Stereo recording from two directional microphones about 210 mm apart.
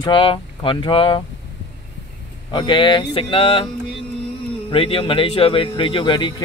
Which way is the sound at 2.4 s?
25° left (ahead or behind).